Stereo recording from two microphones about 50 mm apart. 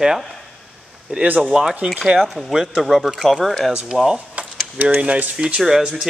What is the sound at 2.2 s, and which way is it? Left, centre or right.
Speech, centre.